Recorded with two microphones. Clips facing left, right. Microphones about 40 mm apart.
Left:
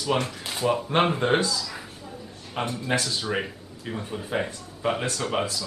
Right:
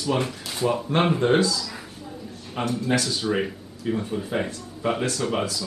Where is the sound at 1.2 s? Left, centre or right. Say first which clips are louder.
Right 5 dB; left.